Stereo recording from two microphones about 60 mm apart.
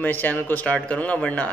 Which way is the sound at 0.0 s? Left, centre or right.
Left.